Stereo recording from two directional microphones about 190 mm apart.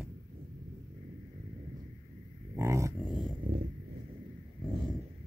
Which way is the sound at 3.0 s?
Centre (ahead or behind).